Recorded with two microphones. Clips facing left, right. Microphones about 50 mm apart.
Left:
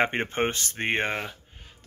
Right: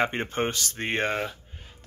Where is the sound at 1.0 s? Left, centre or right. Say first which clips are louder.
Right 2 dB; centre.